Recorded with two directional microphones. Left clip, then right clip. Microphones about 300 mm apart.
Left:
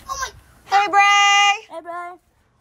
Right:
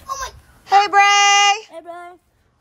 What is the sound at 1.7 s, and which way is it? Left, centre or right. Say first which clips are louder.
Speech: left 3 dB; centre.